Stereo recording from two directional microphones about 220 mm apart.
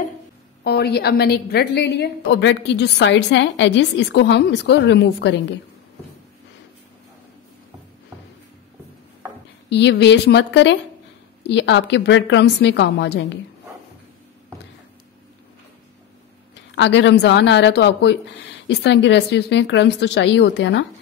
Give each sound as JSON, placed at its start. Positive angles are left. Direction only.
{"t": 0.7, "sound": "a woman's voice", "side_deg": 45}
{"t": 9.7, "sound": "a woman's voice", "side_deg": 50}
{"t": 16.5, "sound": "a woman's voice", "side_deg": 55}